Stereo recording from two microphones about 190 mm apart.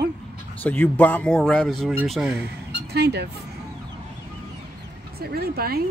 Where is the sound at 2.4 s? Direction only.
60° right (ahead or behind).